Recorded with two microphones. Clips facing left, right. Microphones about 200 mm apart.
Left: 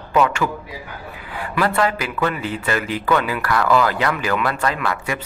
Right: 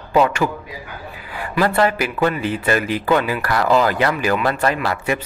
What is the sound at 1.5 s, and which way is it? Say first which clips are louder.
A man's voice: right 2 dB; 30° right (ahead or behind).